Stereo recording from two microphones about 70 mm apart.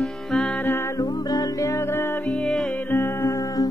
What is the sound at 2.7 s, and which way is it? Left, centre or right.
Music, left.